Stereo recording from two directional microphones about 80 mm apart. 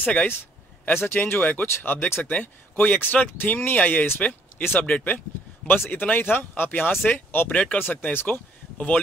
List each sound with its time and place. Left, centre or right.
0.0 s speech: centre
0.9 s speech: left